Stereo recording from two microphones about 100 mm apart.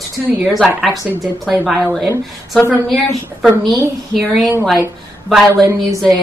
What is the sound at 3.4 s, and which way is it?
Speech, centre (ahead or behind).